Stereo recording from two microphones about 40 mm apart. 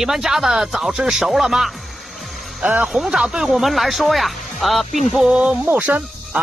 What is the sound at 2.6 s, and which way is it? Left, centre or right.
Speech, centre.